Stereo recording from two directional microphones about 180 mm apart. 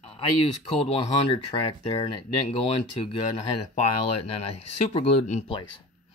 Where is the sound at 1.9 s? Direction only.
30° left (ahead or behind).